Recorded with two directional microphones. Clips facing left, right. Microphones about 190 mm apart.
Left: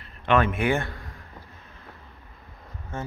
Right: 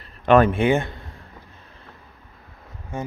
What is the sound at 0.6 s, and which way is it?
Speech, 20° right (ahead or behind).